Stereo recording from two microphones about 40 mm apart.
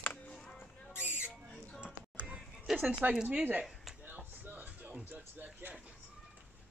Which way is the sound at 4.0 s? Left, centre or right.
Right.